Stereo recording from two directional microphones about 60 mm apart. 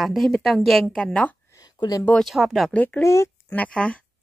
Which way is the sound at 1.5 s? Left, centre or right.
Left.